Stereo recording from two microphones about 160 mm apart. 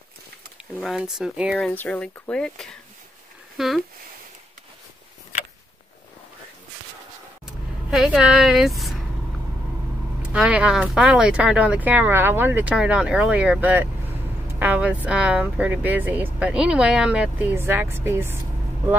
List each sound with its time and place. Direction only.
0.8 s a woman's voice: 5° right (ahead or behind)
1.6 s speech: 10° left (ahead or behind)
5.3 s a sound: 45° left (ahead or behind)
7.9 s a woman's voice: 5° right (ahead or behind)
10.2 s speech: 5° right (ahead or behind)